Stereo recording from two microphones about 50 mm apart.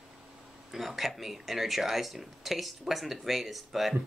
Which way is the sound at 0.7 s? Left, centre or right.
Centre.